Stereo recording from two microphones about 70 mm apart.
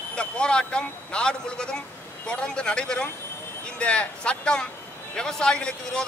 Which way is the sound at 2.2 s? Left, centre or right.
Centre.